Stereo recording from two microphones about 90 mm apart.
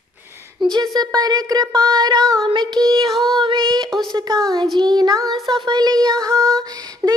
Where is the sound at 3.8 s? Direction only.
5° left (ahead or behind).